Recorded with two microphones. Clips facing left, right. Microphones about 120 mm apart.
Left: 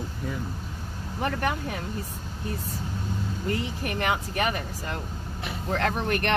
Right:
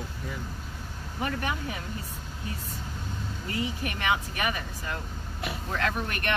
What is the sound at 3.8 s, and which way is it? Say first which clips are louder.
Speech: left 1 dB; 40° left (ahead or behind).